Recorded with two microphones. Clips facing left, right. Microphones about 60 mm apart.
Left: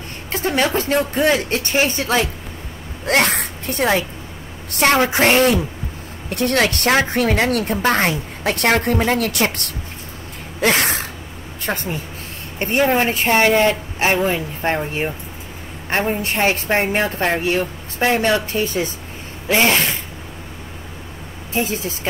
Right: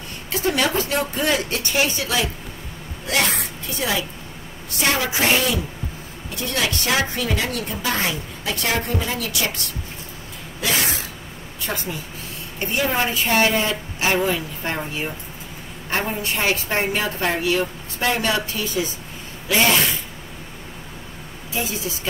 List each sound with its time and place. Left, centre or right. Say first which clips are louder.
0.3 s a woman's voice: left 2 dB; left
6.2 s a woman's voice: left 7 dB; left
21.5 s a woman's voice: left 5 dB; left